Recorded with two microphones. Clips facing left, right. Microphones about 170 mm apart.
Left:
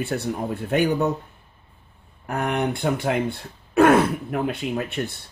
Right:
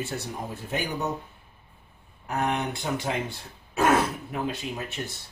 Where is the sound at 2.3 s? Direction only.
55° left (ahead or behind).